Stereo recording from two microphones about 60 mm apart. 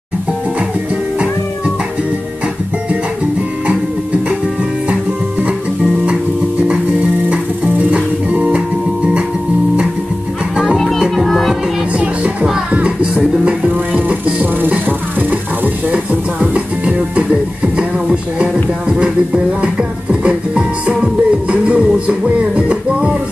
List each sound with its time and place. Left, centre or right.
6.7 s music: centre
10.5 s music: centre
11.2 s music: centre
11.9 s music: centre